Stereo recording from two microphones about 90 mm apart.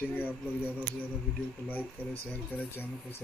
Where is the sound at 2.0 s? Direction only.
20° left (ahead or behind).